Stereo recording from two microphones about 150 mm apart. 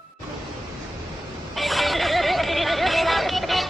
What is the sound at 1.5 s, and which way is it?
Neigh, centre (ahead or behind).